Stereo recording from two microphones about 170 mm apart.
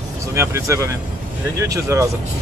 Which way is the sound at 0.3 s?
15° right (ahead or behind).